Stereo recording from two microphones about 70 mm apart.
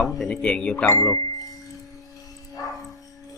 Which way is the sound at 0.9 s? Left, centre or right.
Left.